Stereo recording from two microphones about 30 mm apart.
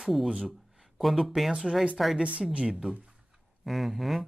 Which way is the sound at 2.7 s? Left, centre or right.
Centre.